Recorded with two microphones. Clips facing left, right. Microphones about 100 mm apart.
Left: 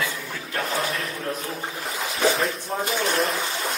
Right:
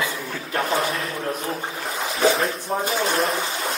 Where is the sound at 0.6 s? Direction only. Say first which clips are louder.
Right 4 dB; 35° right (ahead or behind).